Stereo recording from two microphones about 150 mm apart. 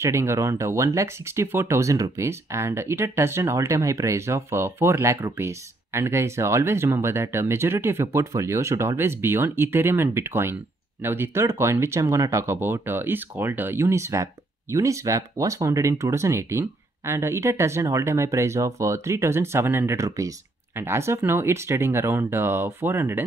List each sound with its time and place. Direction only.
0.0 s speech: 20° right (ahead or behind)